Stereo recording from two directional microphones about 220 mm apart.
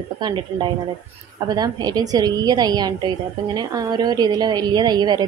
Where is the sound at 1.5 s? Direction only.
20° right (ahead or behind).